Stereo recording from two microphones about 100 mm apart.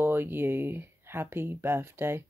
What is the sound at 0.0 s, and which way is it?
Speech, 20° right (ahead or behind).